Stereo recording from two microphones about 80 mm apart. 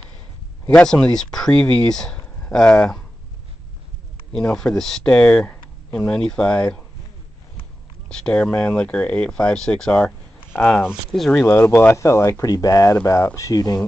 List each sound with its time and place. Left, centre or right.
0.9 s speech: centre
4.3 s speech: centre
4.7 s speech: centre
8.3 s speech: centre
11.1 s speech: centre
11.4 s speech: left